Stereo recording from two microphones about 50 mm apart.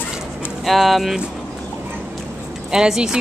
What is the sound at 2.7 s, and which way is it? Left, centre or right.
Speech, centre.